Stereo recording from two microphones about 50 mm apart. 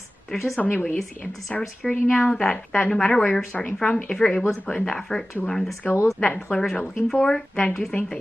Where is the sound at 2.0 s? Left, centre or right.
Left.